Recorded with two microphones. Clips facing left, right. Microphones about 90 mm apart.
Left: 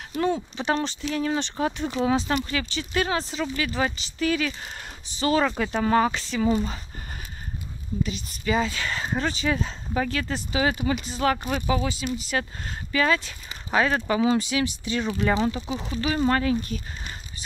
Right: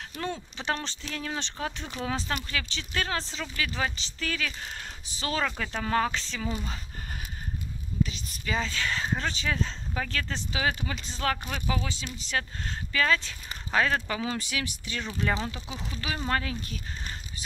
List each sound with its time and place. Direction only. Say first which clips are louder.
0.1 s speech: left 11 dB; 10° left (ahead or behind)
2.3 s speech: left 7 dB; 5° left (ahead or behind)
5.0 s speech: left 10 dB; centre (ahead or behind)
5.6 s speech: left 6 dB; 15° left (ahead or behind)
8.0 s speech: even; 5° left (ahead or behind)